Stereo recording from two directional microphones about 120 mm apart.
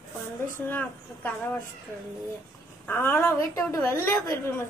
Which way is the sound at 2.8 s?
20° left (ahead or behind).